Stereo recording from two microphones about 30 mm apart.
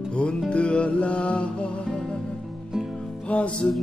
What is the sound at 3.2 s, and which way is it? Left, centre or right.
Music, left.